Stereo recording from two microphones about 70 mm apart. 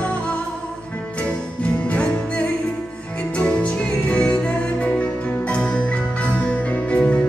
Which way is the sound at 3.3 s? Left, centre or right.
Centre.